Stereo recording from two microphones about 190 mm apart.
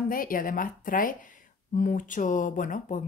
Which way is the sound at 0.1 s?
45° left (ahead or behind).